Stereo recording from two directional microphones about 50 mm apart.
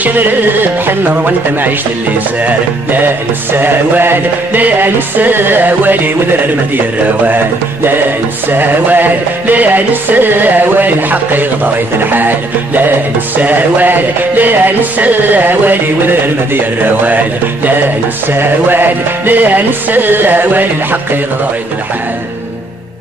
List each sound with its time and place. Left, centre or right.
0.0 s music: right